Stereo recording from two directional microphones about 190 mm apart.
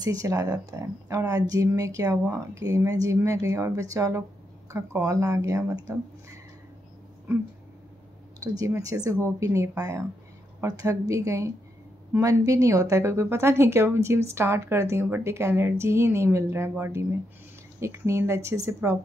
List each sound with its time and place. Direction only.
0.0 s speech: 15° right (ahead or behind)
8.4 s speech: 15° right (ahead or behind)